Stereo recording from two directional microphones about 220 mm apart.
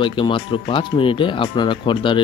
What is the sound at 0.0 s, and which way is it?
Speech, 20° left (ahead or behind).